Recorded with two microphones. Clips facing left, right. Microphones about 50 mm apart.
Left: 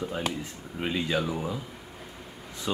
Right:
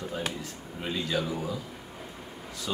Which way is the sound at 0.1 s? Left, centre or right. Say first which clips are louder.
Left 2 dB; left.